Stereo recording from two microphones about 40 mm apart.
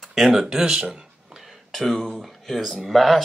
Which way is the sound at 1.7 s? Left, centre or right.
Centre.